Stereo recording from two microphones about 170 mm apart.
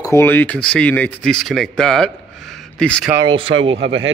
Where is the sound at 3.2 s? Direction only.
30° right (ahead or behind).